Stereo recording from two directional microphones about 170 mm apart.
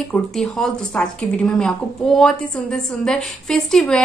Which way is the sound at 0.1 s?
5° left (ahead or behind).